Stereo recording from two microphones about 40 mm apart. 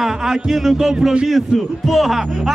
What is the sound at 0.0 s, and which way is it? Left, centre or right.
A man's voice, centre.